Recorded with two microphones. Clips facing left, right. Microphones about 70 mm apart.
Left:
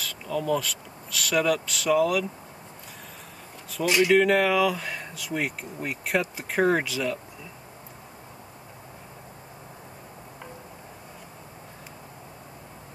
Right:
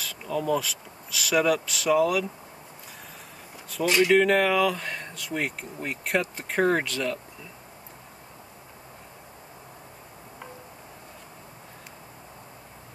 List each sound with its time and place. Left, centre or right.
0.0 s speech: centre
3.7 s speech: centre